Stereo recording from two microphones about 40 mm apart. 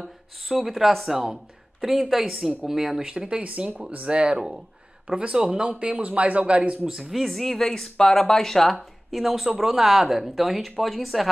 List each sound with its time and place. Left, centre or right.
0.0 s speech: centre
3.1 s speech: right
6.9 s speech: centre
7.2 s speech: centre
9.1 s speech: centre